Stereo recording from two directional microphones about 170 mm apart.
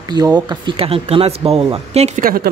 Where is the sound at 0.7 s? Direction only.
35° right (ahead or behind).